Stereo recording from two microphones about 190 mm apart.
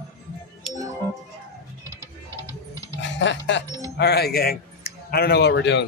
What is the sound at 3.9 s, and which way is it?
Speech, 60° left (ahead or behind).